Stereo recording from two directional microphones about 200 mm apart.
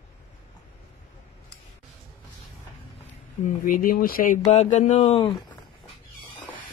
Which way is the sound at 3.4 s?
45° left (ahead or behind).